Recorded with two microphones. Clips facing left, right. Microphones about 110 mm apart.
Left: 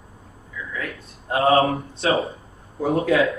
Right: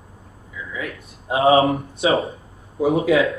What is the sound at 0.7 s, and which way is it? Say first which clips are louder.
Speech: right 2 dB; 10° right (ahead or behind).